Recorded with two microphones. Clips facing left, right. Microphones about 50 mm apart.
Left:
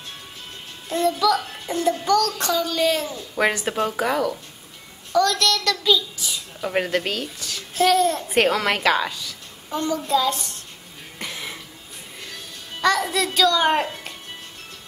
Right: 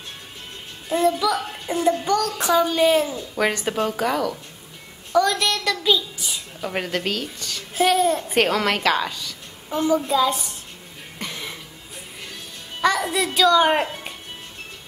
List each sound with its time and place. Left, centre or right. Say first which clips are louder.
0.8 s child singing: even; centre
3.3 s speech: left 1 dB; centre
5.1 s child singing: even; centre
6.6 s speech: left 3 dB; centre
7.7 s child singing: even; centre
8.3 s speech: even; centre
9.7 s child singing: right 2 dB; centre
11.1 s cough: even; centre
12.8 s a child's voice: even; centre